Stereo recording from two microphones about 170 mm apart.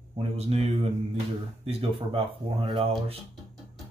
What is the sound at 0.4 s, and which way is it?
Speech, 35° right (ahead or behind).